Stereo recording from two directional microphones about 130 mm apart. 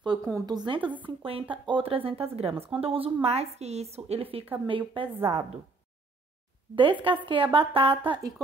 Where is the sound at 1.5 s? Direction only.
45° right (ahead or behind).